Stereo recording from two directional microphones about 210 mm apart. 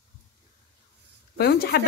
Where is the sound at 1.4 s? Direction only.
50° left (ahead or behind).